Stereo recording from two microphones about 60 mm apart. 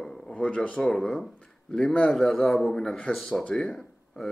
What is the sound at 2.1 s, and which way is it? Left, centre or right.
A man's voice, centre.